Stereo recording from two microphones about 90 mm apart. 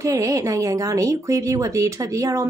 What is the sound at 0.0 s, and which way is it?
Speech, 35° right (ahead or behind).